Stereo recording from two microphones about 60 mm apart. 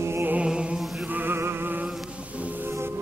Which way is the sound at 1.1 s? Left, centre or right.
Right.